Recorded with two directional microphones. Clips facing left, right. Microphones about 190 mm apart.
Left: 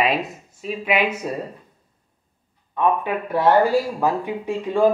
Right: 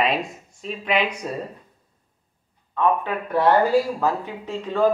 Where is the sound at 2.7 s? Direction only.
15° left (ahead or behind).